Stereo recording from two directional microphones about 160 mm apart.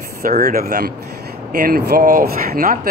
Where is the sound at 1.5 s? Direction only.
70° right (ahead or behind).